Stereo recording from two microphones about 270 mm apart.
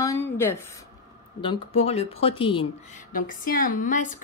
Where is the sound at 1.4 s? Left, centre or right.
Centre.